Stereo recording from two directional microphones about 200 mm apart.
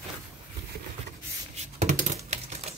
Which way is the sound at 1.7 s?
35° right (ahead or behind).